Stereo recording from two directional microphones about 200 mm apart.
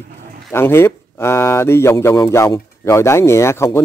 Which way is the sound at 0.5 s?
10° left (ahead or behind).